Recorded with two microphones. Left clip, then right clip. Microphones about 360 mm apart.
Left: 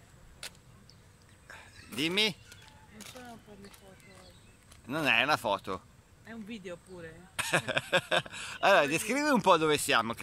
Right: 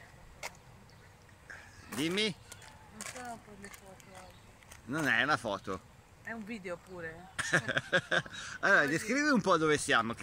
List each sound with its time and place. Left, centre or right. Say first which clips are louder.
0.4 s vehicle: right 2 dB; centre
1.5 s livestock: even; centre
2.0 s speech: left 4 dB; centre
2.5 s a sound: right 1 dB; centre
4.8 s speech: left 3 dB; centre